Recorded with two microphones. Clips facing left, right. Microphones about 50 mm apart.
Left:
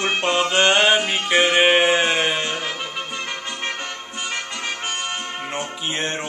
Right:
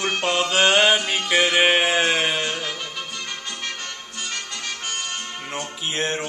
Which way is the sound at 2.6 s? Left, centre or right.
Left.